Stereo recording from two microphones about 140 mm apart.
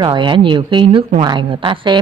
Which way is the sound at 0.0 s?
35° right (ahead or behind).